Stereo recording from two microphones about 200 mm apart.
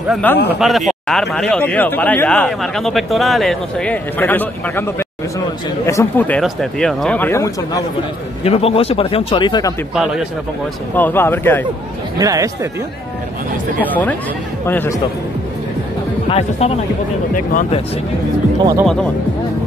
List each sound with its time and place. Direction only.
0.1 s speech: 10° left (ahead or behind)
8.5 s speech: 30° left (ahead or behind)
11.0 s speech: 10° left (ahead or behind)
12.2 s speech: 15° right (ahead or behind)
14.7 s speech: 10° left (ahead or behind)
16.3 s speech: 30° left (ahead or behind)
18.6 s speech: 20° right (ahead or behind)